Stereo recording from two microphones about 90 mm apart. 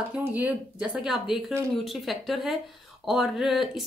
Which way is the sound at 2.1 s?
Centre (ahead or behind).